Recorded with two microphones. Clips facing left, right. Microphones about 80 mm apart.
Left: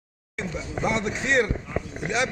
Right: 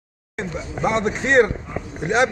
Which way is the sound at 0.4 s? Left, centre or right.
Right.